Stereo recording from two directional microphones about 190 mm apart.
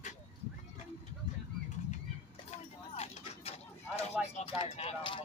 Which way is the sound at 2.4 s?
35° left (ahead or behind).